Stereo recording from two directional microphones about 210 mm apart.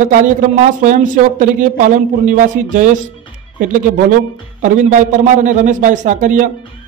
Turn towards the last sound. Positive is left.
turn(degrees=-35)  # may be behind; listen again after turning